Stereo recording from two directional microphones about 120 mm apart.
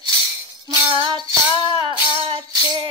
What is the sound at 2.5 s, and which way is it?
Music, 40° right (ahead or behind).